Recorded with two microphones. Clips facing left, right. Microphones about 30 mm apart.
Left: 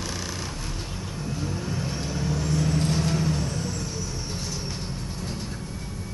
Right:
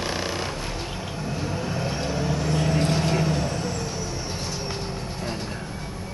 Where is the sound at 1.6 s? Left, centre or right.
Right.